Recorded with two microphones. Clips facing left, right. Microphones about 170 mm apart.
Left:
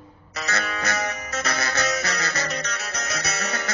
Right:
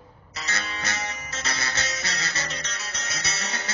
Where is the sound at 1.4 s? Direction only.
65° left (ahead or behind).